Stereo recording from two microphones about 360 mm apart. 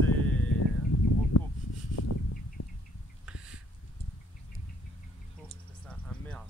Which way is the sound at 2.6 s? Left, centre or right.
Left.